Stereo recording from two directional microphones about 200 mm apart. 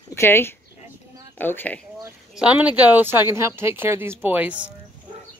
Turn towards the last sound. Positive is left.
turn(degrees=-5)  # may be behind; listen again after turning